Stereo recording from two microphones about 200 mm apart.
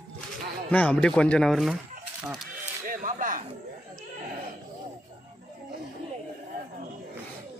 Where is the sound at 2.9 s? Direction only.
40° right (ahead or behind).